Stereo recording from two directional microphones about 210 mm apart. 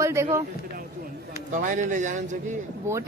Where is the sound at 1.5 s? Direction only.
35° right (ahead or behind).